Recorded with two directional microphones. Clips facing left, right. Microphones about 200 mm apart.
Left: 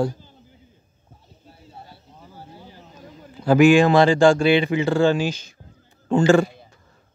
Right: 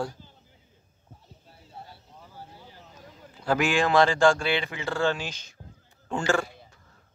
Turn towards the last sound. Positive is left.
turn(degrees=20)  # may be behind; listen again after turning